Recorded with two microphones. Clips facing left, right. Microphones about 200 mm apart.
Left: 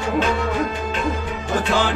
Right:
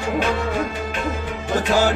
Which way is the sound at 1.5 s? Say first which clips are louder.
Right 2 dB; 40° right (ahead or behind).